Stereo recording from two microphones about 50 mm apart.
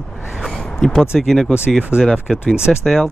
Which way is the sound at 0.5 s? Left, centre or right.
Centre.